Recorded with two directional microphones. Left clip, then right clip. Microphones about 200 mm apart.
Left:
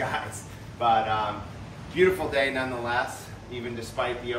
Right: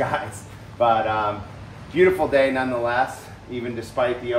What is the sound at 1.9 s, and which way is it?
A man's voice, 45° right (ahead or behind).